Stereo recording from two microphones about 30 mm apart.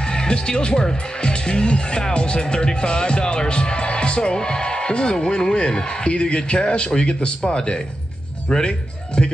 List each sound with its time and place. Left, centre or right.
0.0 s speech: left
6.0 s speech: left